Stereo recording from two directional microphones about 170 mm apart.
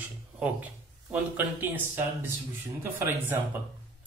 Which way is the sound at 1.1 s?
10° right (ahead or behind).